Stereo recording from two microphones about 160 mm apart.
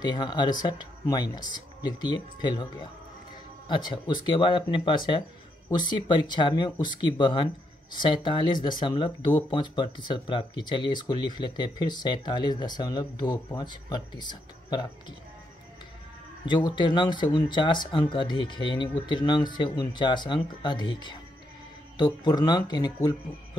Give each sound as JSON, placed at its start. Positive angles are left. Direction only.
{"t": 0.0, "sound": "speech", "side_deg": 25}
{"t": 16.4, "sound": "speech", "side_deg": 30}